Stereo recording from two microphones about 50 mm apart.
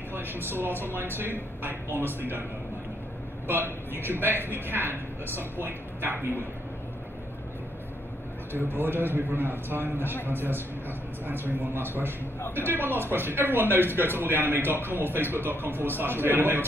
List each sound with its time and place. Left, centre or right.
0.1 s a man's voice: right
3.4 s a man's voice: right
8.5 s a man's voice: right
11.6 s a man's voice: right